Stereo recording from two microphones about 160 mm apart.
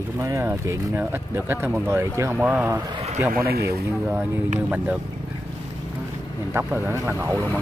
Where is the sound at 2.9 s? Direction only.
40° right (ahead or behind).